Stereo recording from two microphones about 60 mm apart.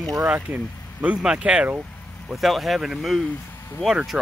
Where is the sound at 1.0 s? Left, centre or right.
Centre.